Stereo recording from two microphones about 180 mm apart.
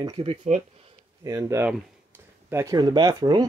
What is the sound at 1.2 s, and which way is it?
Speech, 15° right (ahead or behind).